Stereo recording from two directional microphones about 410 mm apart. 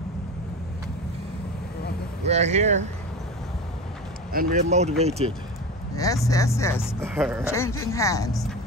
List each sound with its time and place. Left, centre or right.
2.2 s speech: centre
4.3 s speech: right
5.9 s speech: centre